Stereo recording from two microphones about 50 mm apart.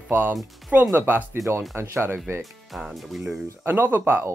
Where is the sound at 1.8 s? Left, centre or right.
Right.